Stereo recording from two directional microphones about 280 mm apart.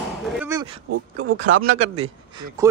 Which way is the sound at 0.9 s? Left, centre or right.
Right.